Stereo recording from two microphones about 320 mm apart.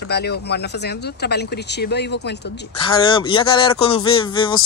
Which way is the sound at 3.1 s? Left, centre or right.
Centre.